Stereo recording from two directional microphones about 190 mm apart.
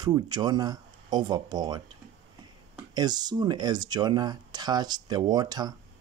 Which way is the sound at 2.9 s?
20° right (ahead or behind).